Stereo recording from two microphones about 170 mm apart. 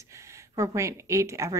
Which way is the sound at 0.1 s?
15° right (ahead or behind).